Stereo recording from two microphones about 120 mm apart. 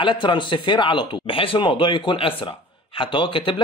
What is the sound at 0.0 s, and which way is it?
Speech, 40° left (ahead or behind).